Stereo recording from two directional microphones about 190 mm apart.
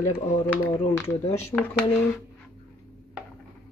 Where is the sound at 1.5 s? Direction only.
Centre (ahead or behind).